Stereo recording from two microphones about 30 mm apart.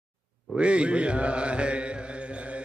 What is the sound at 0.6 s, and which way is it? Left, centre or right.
Mantra, right.